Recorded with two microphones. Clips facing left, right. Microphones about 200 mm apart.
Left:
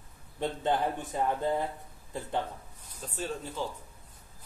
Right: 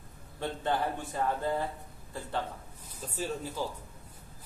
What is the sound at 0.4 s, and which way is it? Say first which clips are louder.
A man's voice: left 2 dB; 20° left (ahead or behind).